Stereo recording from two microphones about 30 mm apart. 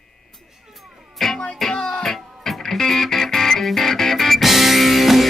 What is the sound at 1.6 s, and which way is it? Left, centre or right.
Music, centre.